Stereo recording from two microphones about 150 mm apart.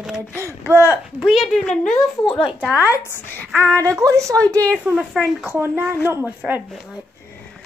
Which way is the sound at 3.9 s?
20° right (ahead or behind).